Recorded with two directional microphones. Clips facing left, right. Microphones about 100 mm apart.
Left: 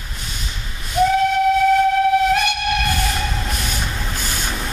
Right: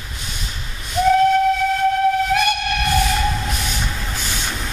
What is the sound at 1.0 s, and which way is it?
Train, centre (ahead or behind).